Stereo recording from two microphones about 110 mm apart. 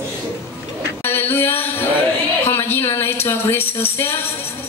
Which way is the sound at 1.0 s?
20° left (ahead or behind).